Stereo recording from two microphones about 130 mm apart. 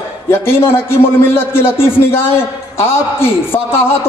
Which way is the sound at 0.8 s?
20° left (ahead or behind).